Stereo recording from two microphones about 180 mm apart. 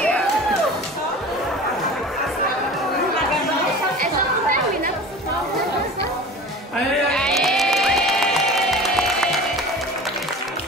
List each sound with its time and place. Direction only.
4.0 s chatter: 50° right (ahead or behind)
7.1 s music: 5° left (ahead or behind)